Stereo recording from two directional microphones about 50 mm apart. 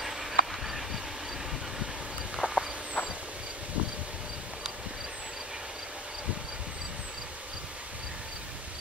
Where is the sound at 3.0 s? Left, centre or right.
Left.